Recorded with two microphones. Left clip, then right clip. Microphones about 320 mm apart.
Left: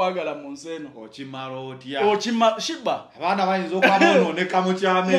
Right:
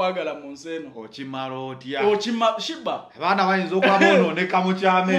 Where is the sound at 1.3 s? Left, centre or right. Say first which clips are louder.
Right 3 dB; right.